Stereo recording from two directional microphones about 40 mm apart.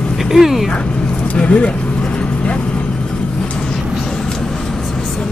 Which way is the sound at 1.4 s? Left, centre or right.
Left.